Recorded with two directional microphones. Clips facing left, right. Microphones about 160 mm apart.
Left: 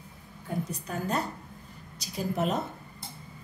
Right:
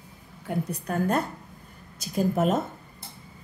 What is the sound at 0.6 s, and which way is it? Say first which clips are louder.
A woman's voice: right 6 dB; 55° right (ahead or behind).